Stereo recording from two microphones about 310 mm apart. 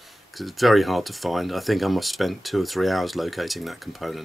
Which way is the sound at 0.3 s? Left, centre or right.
Centre.